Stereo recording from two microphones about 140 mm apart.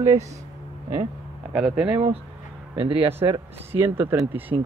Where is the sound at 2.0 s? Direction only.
45° right (ahead or behind).